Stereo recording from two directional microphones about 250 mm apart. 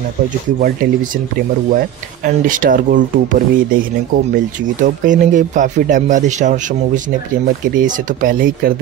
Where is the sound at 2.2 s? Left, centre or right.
Right.